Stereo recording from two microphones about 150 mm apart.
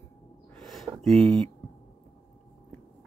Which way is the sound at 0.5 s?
Centre (ahead or behind).